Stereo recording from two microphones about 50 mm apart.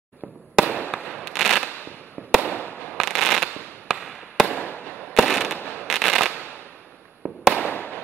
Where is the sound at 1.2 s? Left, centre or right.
Centre.